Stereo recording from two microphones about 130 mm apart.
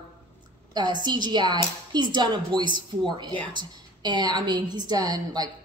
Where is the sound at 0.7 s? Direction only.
35° right (ahead or behind).